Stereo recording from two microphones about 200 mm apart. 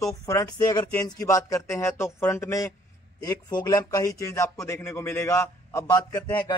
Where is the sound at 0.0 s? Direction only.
15° left (ahead or behind).